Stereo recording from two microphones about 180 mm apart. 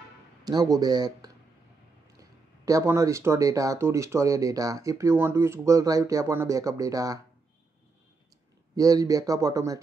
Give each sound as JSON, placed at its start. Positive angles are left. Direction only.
{"t": 0.4, "sound": "speech", "side_deg": -20}
{"t": 8.7, "sound": "speech", "side_deg": -20}